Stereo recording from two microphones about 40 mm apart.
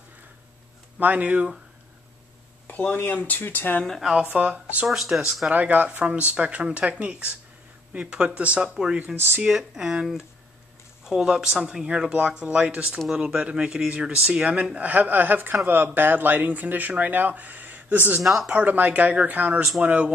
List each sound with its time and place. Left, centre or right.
0.9 s speech: right
3.0 s speech: left
4.3 s speech: right
4.8 s speech: centre
5.5 s speech: right
6.0 s speech: right
8.6 s speech: centre
9.1 s speech: right
9.5 s speech: centre
11.1 s speech: centre; by 14.7 s right
14.8 s speech: right
18.2 s speech: centre
18.5 s speech: right
19.8 s speech: right